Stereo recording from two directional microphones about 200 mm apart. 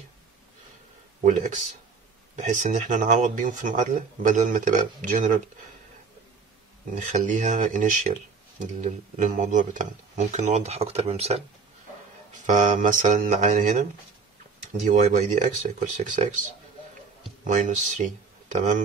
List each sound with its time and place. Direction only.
2.4 s speech: 40° right (ahead or behind)
7.0 s speech: 40° right (ahead or behind)
14.9 s speech: 35° right (ahead or behind)
17.5 s speech: 40° right (ahead or behind)